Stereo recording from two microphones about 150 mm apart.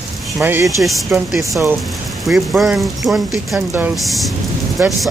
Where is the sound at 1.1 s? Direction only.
5° right (ahead or behind).